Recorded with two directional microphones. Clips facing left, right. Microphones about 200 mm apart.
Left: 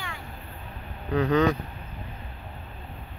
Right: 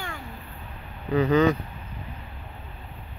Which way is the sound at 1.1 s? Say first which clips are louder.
Right 2 dB; 5° right (ahead or behind).